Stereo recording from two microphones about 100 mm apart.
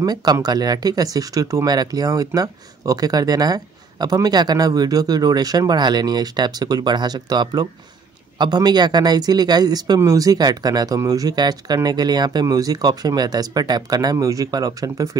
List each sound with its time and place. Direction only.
0.0 s speech: 40° right (ahead or behind)